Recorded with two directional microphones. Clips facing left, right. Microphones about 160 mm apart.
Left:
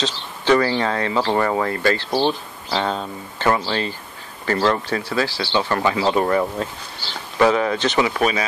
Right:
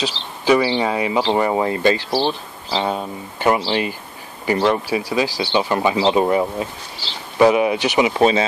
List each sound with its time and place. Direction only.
0.0 s speech: 10° right (ahead or behind)
8.1 s speech: 25° right (ahead or behind)